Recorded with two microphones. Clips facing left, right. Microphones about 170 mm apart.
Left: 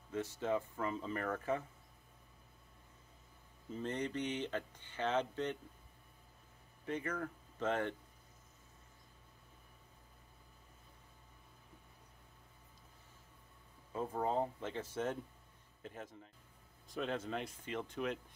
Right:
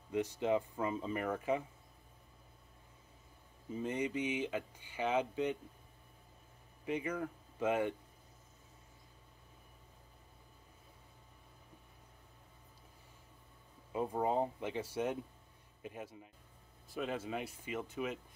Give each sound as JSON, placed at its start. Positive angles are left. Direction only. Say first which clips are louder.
{"t": 0.1, "sound": "speech", "louder": "right 4 dB", "side_deg": -15}
{"t": 3.7, "sound": "speech", "louder": "right 3 dB", "side_deg": -10}
{"t": 6.8, "sound": "speech", "louder": "right 3 dB", "side_deg": -10}
{"t": 13.9, "sound": "speech", "louder": "right 2 dB", "side_deg": -15}